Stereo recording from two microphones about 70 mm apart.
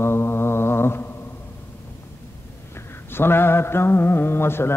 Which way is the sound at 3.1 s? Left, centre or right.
Left.